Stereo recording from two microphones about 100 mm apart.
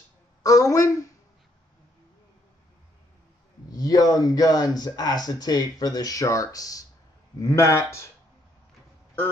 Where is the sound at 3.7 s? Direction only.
40° left (ahead or behind).